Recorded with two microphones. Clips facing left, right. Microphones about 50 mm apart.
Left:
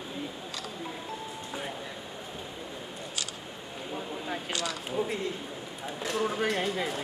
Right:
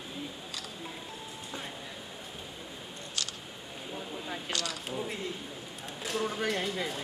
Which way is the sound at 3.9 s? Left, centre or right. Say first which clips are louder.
Left 4 dB; centre.